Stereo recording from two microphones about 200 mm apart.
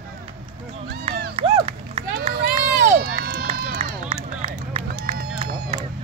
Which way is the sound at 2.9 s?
50° right (ahead or behind).